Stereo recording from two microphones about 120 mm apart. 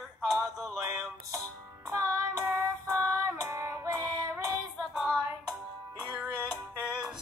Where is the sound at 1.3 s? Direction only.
25° right (ahead or behind).